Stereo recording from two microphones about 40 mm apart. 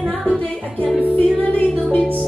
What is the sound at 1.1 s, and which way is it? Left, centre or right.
Music, left.